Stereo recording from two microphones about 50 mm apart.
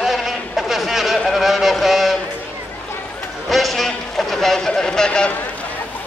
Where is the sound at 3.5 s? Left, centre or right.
Centre.